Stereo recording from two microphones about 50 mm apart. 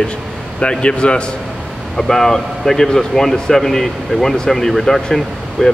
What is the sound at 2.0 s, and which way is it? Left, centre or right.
Speech, centre.